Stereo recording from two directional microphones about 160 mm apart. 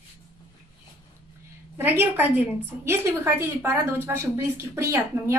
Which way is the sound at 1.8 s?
10° right (ahead or behind).